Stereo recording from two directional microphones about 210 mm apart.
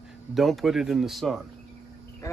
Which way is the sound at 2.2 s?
15° left (ahead or behind).